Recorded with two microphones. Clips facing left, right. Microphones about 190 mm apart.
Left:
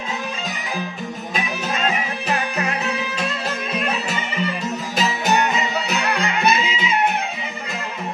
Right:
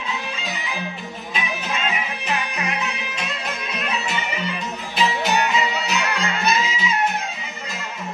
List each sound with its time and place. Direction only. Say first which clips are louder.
1.3 s music: left 1 dB; 45° left (ahead or behind)
4.9 s music: even; 45° left (ahead or behind)